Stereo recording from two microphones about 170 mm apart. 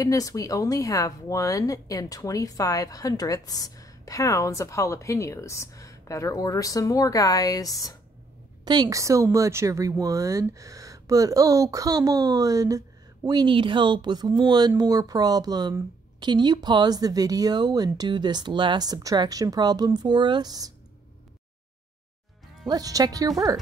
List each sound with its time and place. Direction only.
0.0 s speech: 20° left (ahead or behind)
8.6 s a woman's voice: 25° right (ahead or behind)
22.7 s a woman's voice: 20° right (ahead or behind)